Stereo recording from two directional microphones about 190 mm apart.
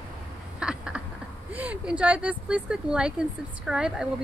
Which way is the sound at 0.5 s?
5° right (ahead or behind).